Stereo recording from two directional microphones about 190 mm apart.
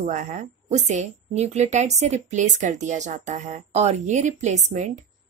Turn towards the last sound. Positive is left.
turn(degrees=-40)  # may be behind; listen again after turning